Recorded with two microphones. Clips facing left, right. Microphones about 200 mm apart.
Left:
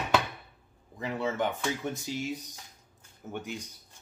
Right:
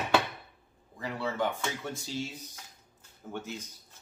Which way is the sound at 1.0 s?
20° left (ahead or behind).